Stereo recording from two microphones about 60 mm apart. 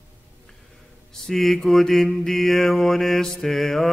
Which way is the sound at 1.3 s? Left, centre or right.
Centre.